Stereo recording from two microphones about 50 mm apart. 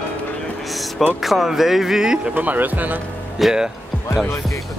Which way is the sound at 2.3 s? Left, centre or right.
Right.